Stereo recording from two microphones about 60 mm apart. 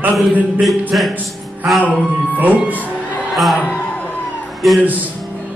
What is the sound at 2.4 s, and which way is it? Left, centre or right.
Speech, right.